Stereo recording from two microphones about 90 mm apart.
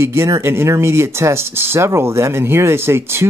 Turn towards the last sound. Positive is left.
turn(degrees=-25)  # may be behind; listen again after turning